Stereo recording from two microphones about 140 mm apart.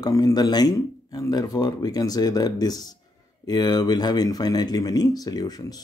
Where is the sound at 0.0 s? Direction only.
30° left (ahead or behind).